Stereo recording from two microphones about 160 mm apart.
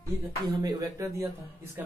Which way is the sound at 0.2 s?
20° right (ahead or behind).